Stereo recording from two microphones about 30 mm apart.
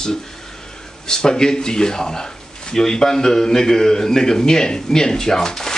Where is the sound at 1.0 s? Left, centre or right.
Left.